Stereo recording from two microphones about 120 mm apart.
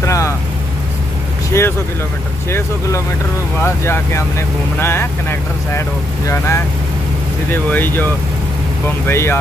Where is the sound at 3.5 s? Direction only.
20° left (ahead or behind).